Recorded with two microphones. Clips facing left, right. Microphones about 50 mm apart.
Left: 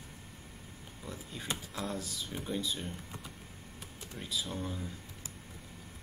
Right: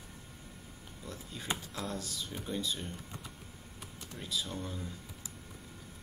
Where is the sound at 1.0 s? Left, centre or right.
Centre.